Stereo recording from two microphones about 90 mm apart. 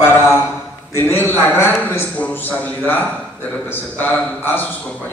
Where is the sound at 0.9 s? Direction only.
25° left (ahead or behind).